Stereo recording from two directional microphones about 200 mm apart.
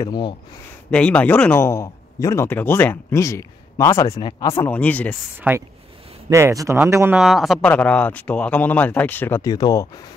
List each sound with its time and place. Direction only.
0.1 s speech: 20° left (ahead or behind)
0.9 s speech: 5° left (ahead or behind)
5.5 s speech: 5° right (ahead or behind)
7.2 s speech: centre (ahead or behind); by 9.8 s 20° left (ahead or behind)